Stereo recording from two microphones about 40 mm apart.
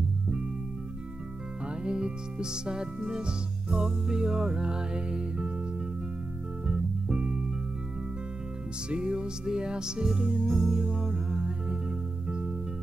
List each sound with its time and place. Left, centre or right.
1.8 s music: right
6.6 s music: right
8.8 s music: right